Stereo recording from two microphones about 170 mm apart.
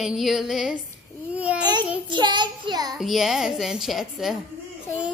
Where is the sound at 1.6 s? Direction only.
25° right (ahead or behind).